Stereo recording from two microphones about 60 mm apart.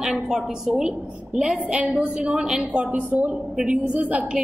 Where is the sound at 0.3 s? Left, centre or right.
Centre.